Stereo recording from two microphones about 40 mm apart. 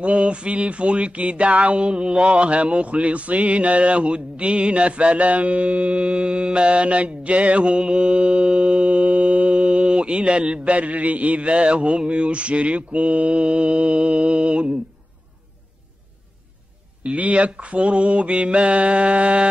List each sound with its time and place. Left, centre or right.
0.0 s music: right
17.0 s music: right